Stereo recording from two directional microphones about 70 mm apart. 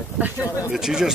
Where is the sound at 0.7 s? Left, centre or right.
Centre.